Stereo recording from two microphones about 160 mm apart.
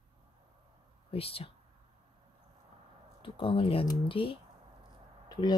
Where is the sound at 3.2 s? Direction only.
35° left (ahead or behind).